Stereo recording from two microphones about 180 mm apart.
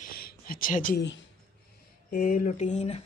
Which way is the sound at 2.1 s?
50° left (ahead or behind).